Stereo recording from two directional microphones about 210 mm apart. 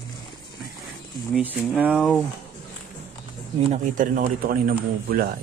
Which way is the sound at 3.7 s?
40° right (ahead or behind).